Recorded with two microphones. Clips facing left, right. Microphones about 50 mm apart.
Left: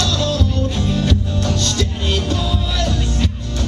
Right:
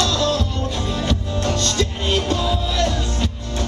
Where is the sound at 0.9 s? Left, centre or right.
Centre.